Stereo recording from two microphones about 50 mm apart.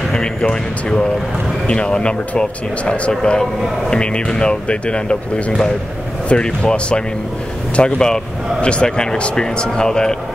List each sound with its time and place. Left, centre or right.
0.1 s speech: centre